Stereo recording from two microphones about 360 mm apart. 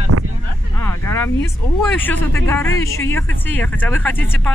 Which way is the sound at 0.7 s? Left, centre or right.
Centre.